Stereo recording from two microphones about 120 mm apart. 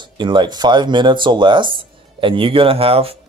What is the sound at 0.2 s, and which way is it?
Speech, 40° right (ahead or behind).